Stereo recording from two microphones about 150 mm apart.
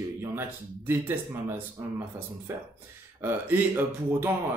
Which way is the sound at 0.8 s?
15° right (ahead or behind).